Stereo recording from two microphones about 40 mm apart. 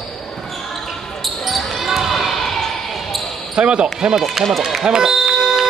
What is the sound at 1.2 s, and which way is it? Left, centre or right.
Basketball bounce, centre.